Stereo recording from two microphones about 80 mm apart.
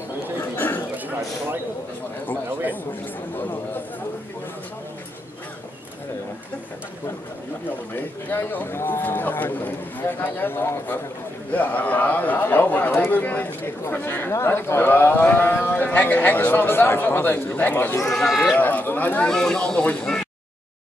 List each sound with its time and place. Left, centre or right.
0.6 s a sound: left
0.9 s a sound: right
3.3 s a man's voice: left
7.9 s a man's voice: left
18.0 s a man's voice: centre
18.6 s a man's voice: left
19.2 s speech: centre